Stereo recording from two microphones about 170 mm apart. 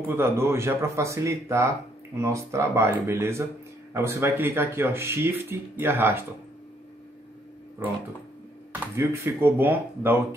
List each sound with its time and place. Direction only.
0.1 s speech: 15° right (ahead or behind)
8.7 s speech: 15° right (ahead or behind)